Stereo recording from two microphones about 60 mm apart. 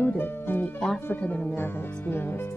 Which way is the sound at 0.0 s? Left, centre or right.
Left.